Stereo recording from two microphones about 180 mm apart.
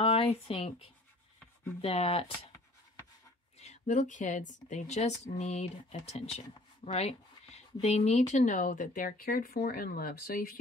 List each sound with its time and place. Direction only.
0.0 s speech: 30° left (ahead or behind)
3.5 s a woman's voice: 40° left (ahead or behind); by 10.5 s 55° left (ahead or behind)